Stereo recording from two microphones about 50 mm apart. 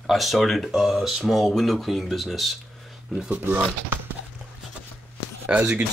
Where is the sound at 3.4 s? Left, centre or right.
Right.